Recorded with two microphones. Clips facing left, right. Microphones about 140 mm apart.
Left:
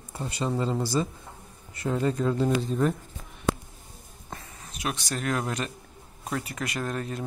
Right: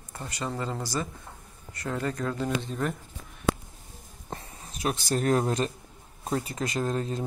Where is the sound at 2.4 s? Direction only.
5° left (ahead or behind).